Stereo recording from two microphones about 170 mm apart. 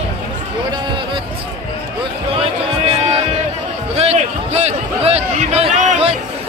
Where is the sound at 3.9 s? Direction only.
40° right (ahead or behind).